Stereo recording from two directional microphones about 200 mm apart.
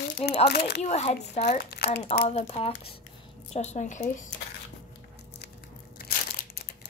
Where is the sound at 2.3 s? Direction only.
30° left (ahead or behind).